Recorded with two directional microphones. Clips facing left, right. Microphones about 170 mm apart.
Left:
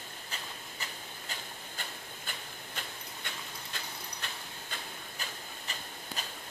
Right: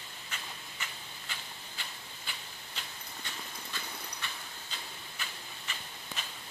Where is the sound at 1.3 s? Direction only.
45° left (ahead or behind).